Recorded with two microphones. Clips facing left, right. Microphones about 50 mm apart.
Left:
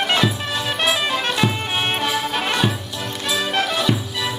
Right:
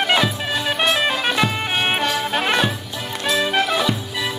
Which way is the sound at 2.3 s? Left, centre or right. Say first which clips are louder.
Right 2 dB; centre.